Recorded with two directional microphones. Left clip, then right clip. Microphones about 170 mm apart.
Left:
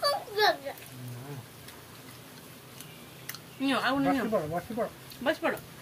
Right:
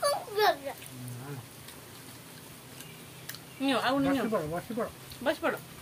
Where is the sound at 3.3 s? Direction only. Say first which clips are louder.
Even; 15° left (ahead or behind).